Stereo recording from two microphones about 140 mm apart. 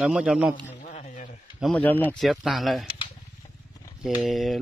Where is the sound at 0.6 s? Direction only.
60° left (ahead or behind).